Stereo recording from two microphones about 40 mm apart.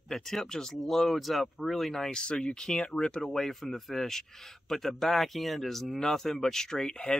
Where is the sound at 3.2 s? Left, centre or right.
Centre.